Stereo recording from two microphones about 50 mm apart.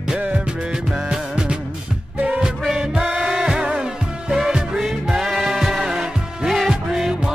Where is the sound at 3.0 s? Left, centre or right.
Right.